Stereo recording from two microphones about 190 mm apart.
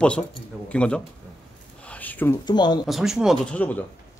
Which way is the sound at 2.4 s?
20° left (ahead or behind).